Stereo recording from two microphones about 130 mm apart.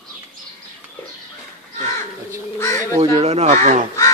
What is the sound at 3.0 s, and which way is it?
Speech, 55° right (ahead or behind).